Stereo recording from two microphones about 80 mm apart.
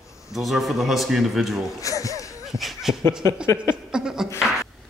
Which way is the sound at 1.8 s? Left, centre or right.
Left.